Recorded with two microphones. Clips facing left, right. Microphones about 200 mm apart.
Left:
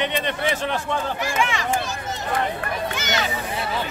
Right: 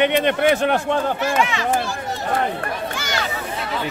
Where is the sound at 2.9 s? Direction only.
20° left (ahead or behind).